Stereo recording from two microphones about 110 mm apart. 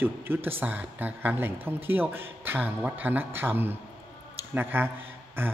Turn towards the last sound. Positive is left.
turn(degrees=-20)  # may be behind; listen again after turning